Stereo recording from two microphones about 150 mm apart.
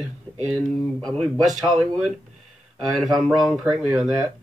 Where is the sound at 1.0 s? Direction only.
5° left (ahead or behind).